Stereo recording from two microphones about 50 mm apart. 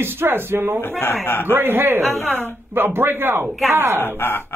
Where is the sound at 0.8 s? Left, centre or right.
Left.